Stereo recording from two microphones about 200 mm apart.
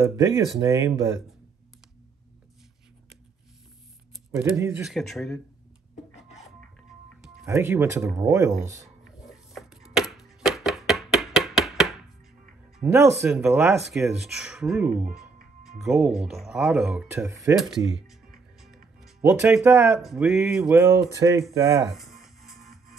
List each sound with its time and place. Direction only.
0.6 s speech: 15° right (ahead or behind)
4.4 s speech: 10° right (ahead or behind)
7.4 s speech: 15° right (ahead or behind)
9.0 s a sound: centre (ahead or behind)
12.7 s speech: 5° right (ahead or behind)
17.3 s speech: 15° right (ahead or behind)
17.6 s speech: centre (ahead or behind)
18.6 s music: centre (ahead or behind)
20.0 s speech: centre (ahead or behind)
20.7 s speech: 15° right (ahead or behind)
21.9 s music: centre (ahead or behind)